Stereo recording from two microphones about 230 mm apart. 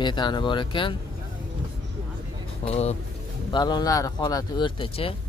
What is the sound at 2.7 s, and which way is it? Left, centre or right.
Speech, left.